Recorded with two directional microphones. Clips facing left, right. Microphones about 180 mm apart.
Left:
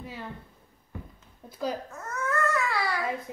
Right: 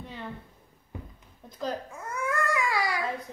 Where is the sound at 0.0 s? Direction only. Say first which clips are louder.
Even; 5° left (ahead or behind).